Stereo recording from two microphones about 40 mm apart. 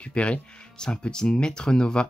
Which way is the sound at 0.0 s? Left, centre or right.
Left.